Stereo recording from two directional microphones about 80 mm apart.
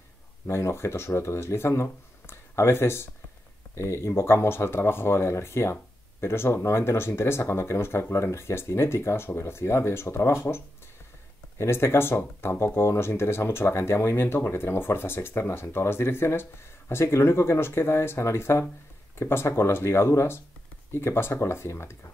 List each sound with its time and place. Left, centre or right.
0.5 s speech: left